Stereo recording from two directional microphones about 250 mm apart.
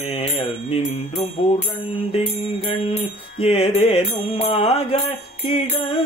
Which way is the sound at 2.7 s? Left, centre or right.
Left.